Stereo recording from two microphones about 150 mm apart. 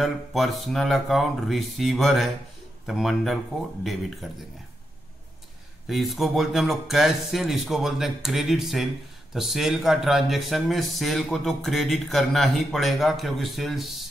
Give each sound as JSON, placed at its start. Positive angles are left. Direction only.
{"t": 0.0, "sound": "speech", "side_deg": 0}
{"t": 5.9, "sound": "speech", "side_deg": 0}